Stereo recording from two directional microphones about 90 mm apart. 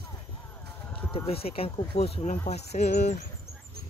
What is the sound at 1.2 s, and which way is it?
Speech, 90° left.